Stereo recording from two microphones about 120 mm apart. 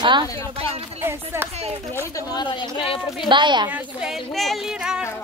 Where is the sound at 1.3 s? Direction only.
20° right (ahead or behind).